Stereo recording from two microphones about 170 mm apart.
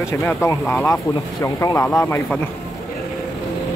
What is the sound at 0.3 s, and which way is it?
Speech, 15° left (ahead or behind).